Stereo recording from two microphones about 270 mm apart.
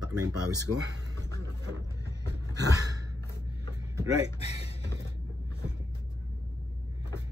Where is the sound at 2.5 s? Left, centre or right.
Centre.